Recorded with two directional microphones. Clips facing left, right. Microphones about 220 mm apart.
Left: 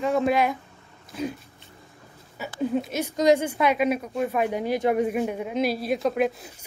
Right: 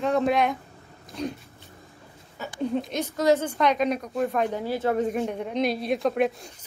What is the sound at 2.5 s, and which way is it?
Speech, 5° left (ahead or behind).